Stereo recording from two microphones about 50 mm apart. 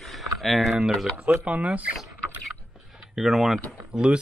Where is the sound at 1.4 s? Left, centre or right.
Right.